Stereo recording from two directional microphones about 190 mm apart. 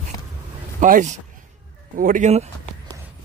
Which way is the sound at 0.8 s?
40° right (ahead or behind).